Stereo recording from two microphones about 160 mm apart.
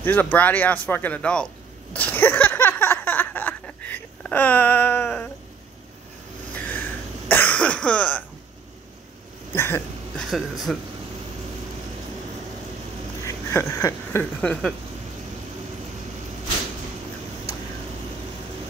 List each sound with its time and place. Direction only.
0.0 s speech: 10° left (ahead or behind)
2.0 s a sound: 10° left (ahead or behind)
6.5 s cough: 10° left (ahead or behind)
9.6 s speech: 15° left (ahead or behind)
10.3 s speech: centre (ahead or behind)
13.2 s a sound: 15° left (ahead or behind)
14.4 s speech: 5° left (ahead or behind)